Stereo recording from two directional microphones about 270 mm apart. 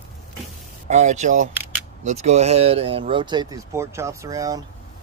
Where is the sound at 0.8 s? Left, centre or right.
Right.